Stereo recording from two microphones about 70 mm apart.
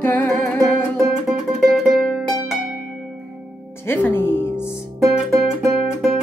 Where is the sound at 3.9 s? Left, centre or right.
Left.